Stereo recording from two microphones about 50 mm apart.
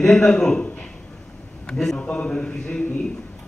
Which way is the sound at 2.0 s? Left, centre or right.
Left.